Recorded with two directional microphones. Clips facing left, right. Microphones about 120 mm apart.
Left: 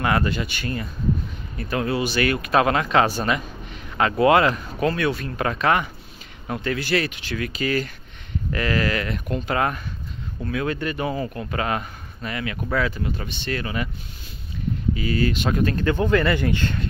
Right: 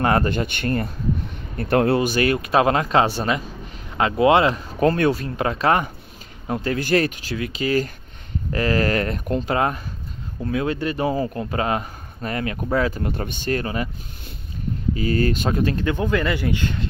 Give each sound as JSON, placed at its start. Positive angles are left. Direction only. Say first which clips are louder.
{"t": 0.0, "sound": "speech", "louder": "right 3 dB", "side_deg": -35}
{"t": 0.3, "sound": "speech", "louder": "right 4 dB", "side_deg": -55}
{"t": 2.0, "sound": "speech", "louder": "right 3 dB", "side_deg": -40}
{"t": 4.7, "sound": "speech", "louder": "right 4 dB", "side_deg": -40}
{"t": 6.8, "sound": "speech", "louder": "right 4 dB", "side_deg": -45}
{"t": 7.3, "sound": "speech", "louder": "right 2 dB", "side_deg": -25}
{"t": 13.0, "sound": "speech", "louder": "right 3 dB", "side_deg": -50}
{"t": 15.0, "sound": "speech", "louder": "right 4 dB", "side_deg": -45}
{"t": 15.5, "sound": "speech", "louder": "even", "side_deg": -25}
{"t": 15.9, "sound": "speech", "louder": "left 2 dB", "side_deg": -10}